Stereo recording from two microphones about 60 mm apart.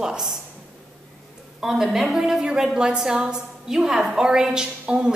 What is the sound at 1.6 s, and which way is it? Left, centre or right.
A woman's voice, centre.